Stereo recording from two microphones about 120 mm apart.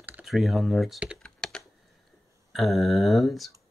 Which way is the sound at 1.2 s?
5° left (ahead or behind).